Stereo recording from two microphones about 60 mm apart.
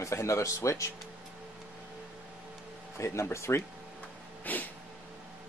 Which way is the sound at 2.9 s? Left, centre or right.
Left.